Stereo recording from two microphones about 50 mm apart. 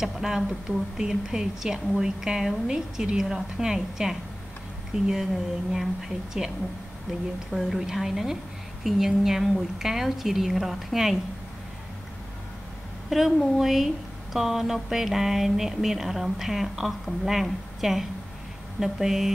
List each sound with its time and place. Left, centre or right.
0.0 s a woman's voice: centre
7.5 s speech: centre
13.1 s a woman's voice: centre